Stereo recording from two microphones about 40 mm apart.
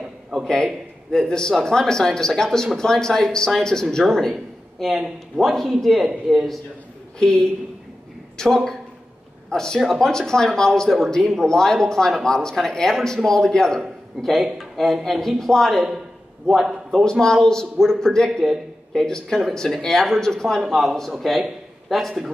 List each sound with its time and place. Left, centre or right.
0.3 s speech: centre
1.1 s speech: centre
4.3 s a sound: centre
5.4 s a man's voice: centre
7.2 s a man's voice: centre
17.0 s speech: centre
20.6 s a man's voice: centre